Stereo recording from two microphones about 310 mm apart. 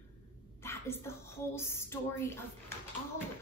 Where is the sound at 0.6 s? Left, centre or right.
Centre.